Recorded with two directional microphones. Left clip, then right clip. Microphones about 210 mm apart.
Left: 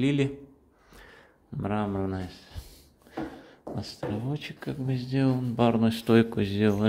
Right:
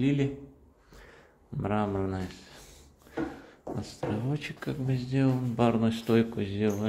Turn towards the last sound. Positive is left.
turn(degrees=25)  # may be behind; listen again after turning